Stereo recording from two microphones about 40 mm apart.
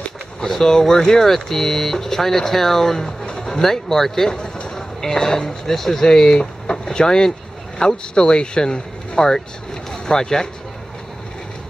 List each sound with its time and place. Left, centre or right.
0.4 s speech: centre